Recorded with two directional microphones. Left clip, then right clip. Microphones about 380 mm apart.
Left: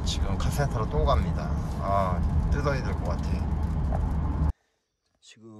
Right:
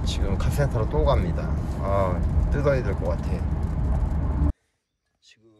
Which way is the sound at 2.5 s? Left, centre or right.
Centre.